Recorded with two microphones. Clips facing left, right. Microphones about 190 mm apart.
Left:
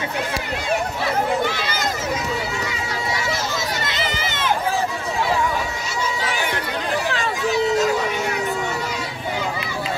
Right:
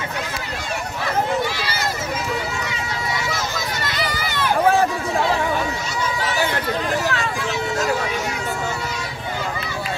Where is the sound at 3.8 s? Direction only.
25° left (ahead or behind).